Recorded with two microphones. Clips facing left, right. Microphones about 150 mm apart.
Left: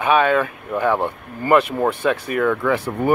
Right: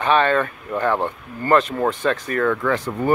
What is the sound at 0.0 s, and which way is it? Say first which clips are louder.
Speech: left 1 dB; 10° left (ahead or behind).